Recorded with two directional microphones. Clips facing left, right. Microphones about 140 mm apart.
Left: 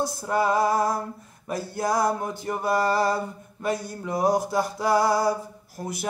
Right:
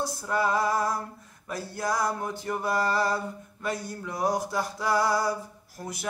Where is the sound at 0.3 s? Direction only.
20° left (ahead or behind).